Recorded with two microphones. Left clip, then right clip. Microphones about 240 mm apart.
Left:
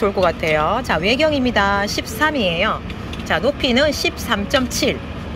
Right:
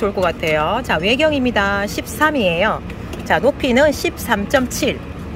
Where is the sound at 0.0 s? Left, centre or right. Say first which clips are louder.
Left 1 dB; centre.